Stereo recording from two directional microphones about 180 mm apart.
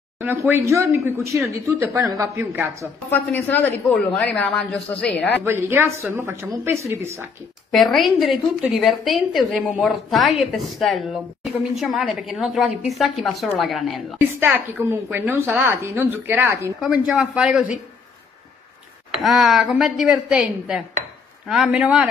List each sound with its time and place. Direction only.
0.2 s speech: 10° right (ahead or behind)
3.1 s speech: 10° left (ahead or behind)
5.4 s speech: 10° right (ahead or behind)
7.7 s a woman's voice: centre (ahead or behind)
16.8 s a woman's voice: centre (ahead or behind)
19.1 s a woman's voice: centre (ahead or behind)